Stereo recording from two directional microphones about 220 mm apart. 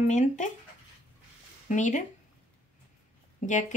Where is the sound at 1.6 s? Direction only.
35° left (ahead or behind).